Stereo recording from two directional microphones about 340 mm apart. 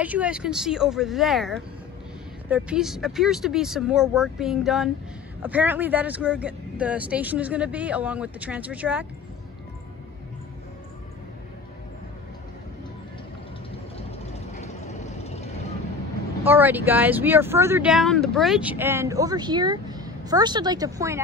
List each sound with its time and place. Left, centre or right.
0.0 s speech: centre
14.5 s vehicle: centre
16.4 s speech: centre